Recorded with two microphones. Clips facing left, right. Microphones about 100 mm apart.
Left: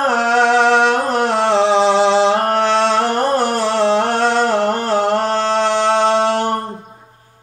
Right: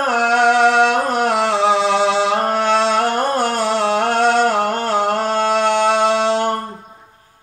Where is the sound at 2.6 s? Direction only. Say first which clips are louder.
Left 1 dB; 15° right (ahead or behind).